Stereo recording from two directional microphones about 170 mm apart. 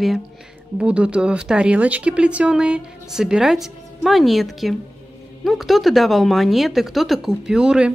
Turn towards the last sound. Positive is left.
turn(degrees=-5)  # may be behind; listen again after turning